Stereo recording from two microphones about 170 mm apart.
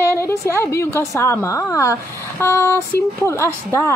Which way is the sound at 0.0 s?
15° left (ahead or behind).